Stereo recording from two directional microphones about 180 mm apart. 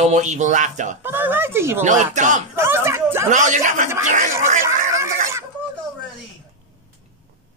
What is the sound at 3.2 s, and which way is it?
Speech, 45° right (ahead or behind).